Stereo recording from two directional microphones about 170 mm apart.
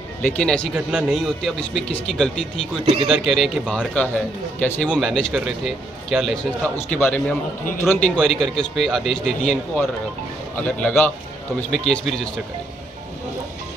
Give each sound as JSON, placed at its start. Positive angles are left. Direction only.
{"t": 0.2, "sound": "speech", "side_deg": 5}
{"t": 2.8, "sound": "a man's voice", "side_deg": -30}
{"t": 3.1, "sound": "speech", "side_deg": 0}